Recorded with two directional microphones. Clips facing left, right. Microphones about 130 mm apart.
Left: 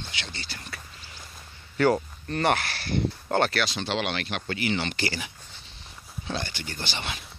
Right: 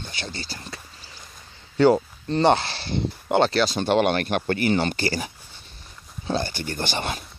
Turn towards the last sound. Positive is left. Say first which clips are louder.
# right 7 dB
turn(degrees=-45)  # may be behind; listen again after turning